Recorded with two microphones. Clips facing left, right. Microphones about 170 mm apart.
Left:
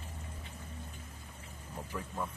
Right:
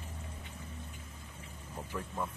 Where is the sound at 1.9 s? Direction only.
Centre (ahead or behind).